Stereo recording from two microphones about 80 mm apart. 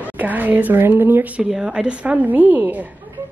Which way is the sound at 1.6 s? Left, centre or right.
Centre.